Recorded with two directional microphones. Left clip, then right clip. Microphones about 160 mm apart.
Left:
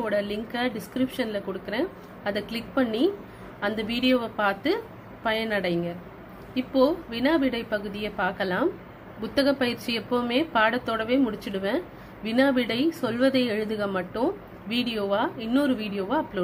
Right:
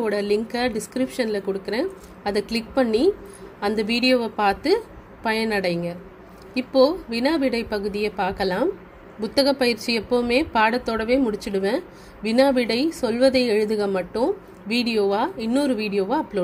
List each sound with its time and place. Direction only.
0.0 s a woman's voice: 50° right (ahead or behind)